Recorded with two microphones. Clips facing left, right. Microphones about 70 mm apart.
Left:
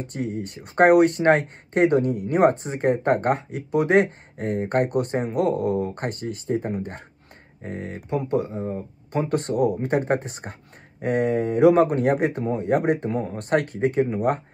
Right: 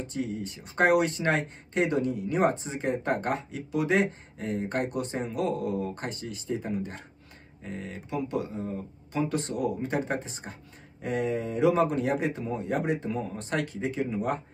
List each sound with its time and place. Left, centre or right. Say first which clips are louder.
0.0 s speech: left 4 dB; left